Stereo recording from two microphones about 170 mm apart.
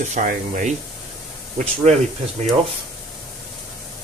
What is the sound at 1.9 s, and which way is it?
Speech, 40° right (ahead or behind).